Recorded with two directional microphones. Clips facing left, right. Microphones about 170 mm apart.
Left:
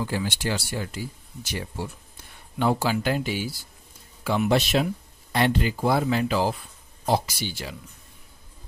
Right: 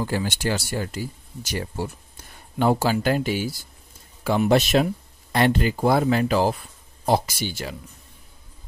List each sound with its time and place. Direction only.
0.0 s speech: 45° right (ahead or behind)